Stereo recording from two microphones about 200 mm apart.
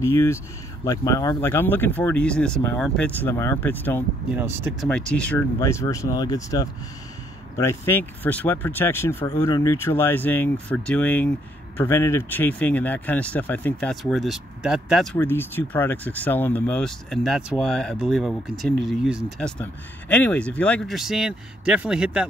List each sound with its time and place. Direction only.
0.0 s speech: 15° left (ahead or behind)
4.4 s speech: 10° right (ahead or behind)
4.8 s speech: 5° left (ahead or behind)
15.1 s speech: 10° left (ahead or behind)